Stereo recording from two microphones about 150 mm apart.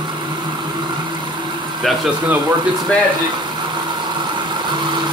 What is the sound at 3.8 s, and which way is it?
Vehicle, 30° right (ahead or behind).